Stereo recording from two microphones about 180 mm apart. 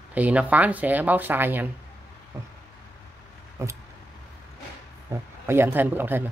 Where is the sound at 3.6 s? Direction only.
15° right (ahead or behind).